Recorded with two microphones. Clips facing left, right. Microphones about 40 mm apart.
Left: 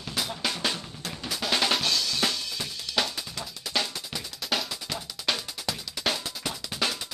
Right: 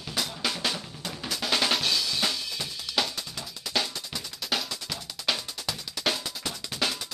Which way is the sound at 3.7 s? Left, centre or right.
Centre.